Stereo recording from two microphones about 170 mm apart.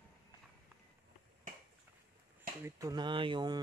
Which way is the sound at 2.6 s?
20° right (ahead or behind).